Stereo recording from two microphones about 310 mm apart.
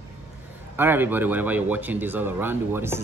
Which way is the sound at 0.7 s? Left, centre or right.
Centre.